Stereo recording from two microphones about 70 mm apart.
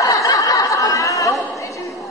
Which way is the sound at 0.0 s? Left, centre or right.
Left.